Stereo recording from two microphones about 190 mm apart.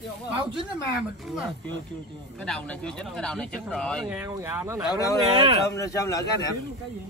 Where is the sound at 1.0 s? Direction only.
5° right (ahead or behind).